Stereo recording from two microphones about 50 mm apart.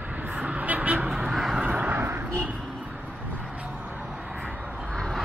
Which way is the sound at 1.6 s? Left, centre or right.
Right.